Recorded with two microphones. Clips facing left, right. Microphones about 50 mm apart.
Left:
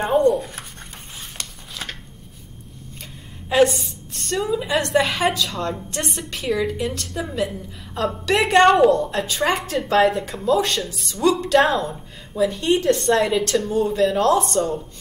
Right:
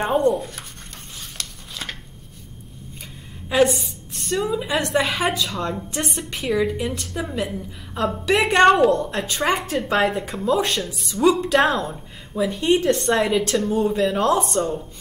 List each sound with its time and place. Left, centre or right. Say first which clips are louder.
0.0 s a woman's voice: left 2 dB; centre
1.4 s a sound: right 1 dB; centre
3.6 s a woman's voice: left 1 dB; centre
10.2 s a woman's voice: left 1 dB; centre